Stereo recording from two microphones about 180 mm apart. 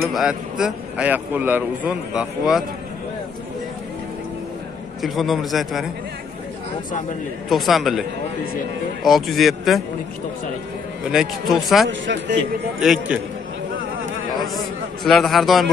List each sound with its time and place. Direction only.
0.1 s a man's voice: 5° right (ahead or behind)
5.0 s a man's voice: centre (ahead or behind)
7.4 s a man's voice: centre (ahead or behind)
9.0 s a man's voice: centre (ahead or behind)
11.1 s a man's voice: centre (ahead or behind)
11.9 s a man's voice: 85° right
12.8 s a man's voice: centre (ahead or behind)
15.0 s a man's voice: centre (ahead or behind)